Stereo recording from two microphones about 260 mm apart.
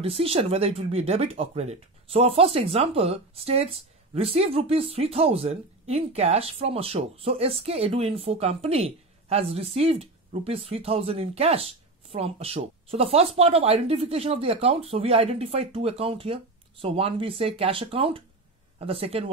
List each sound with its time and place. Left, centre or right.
0.0 s speech: right